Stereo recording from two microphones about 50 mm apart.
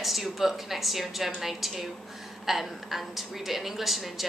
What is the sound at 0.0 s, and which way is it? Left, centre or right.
A woman's voice, centre.